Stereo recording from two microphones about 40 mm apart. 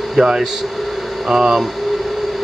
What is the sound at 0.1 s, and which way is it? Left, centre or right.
Speech, centre.